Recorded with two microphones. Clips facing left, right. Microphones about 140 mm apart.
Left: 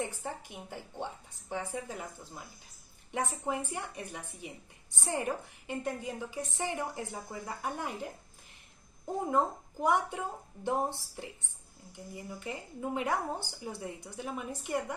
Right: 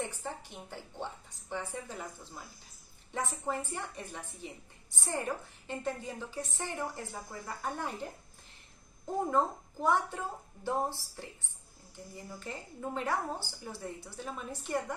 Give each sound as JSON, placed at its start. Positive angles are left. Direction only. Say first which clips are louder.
{"t": 0.0, "sound": "speech", "louder": "left 1 dB", "side_deg": 10}
{"t": 3.1, "sound": "speech", "louder": "left 2 dB", "side_deg": 15}